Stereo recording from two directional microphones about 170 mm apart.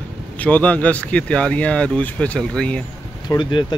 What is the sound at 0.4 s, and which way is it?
Speech, 10° left (ahead or behind).